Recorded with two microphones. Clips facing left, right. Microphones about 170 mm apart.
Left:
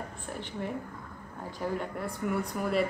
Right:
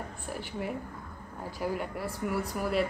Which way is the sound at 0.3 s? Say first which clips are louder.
Right 1 dB; 5° right (ahead or behind).